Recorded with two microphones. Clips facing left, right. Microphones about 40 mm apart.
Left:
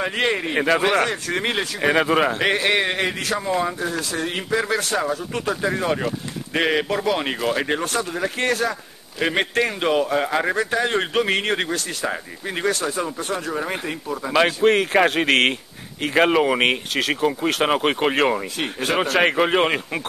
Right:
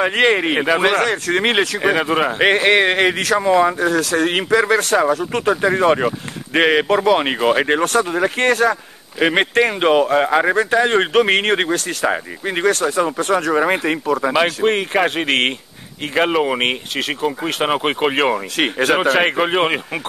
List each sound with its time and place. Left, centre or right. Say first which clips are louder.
0.0 s speech: right 7 dB; right
1.8 s speech: right 1 dB; centre
2.4 s speech: right 6 dB; right
2.7 s speech: right 7 dB; right
3.3 s speech: right 10 dB; right
4.0 s speech: right 8 dB; right
5.4 s speech: right 8 dB; right
7.8 s speech: right 7 dB; right
10.2 s speech: right 6 dB; right
10.5 s speech: right 6 dB; right
14.3 s speech: left 3 dB; centre
18.6 s speech: right 7 dB; right
19.1 s speech: right 2 dB; centre